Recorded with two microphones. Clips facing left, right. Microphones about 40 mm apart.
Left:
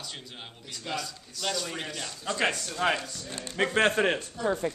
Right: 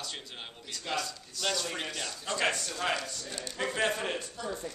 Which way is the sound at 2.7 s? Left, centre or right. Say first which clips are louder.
Left 4 dB; centre.